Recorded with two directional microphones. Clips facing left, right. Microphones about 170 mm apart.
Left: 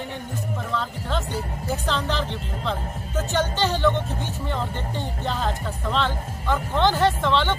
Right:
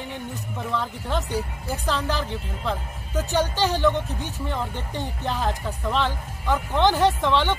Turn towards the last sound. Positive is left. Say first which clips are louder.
# even
turn(degrees=-15)  # may be behind; listen again after turning